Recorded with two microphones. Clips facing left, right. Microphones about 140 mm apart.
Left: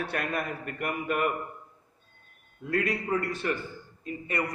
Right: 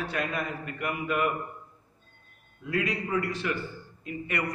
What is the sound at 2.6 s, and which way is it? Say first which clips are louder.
A man's voice: left 1 dB; 50° left (ahead or behind).